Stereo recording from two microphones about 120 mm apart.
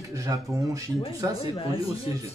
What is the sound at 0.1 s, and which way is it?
Speech, 30° right (ahead or behind).